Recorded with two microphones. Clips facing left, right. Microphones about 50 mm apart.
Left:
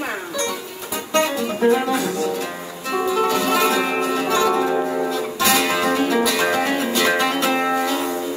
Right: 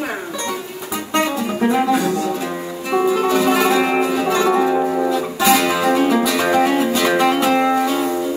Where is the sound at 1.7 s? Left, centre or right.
Centre.